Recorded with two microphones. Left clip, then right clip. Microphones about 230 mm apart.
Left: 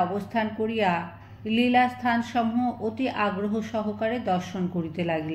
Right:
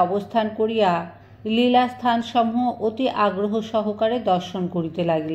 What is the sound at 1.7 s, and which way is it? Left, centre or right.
Speech, centre.